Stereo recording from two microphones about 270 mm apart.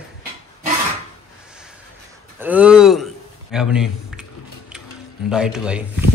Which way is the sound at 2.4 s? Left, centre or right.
Centre.